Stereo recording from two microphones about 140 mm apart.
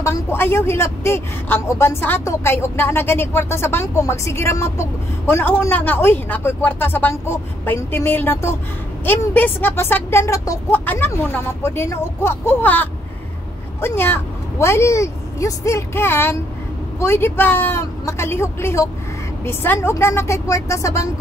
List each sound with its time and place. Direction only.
0.0 s a woman's voice: 20° left (ahead or behind)